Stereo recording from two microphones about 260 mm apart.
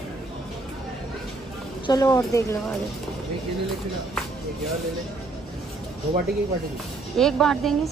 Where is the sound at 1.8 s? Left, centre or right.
Centre.